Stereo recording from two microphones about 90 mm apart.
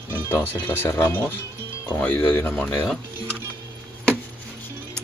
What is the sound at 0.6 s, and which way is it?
Speech, 20° left (ahead or behind).